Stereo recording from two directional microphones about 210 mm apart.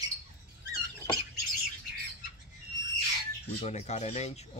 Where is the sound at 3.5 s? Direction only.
30° left (ahead or behind).